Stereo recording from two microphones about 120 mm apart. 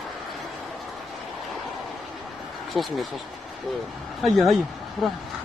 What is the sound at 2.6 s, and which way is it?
A man's voice, centre (ahead or behind).